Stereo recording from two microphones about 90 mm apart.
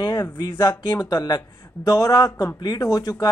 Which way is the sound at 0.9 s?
45° left (ahead or behind).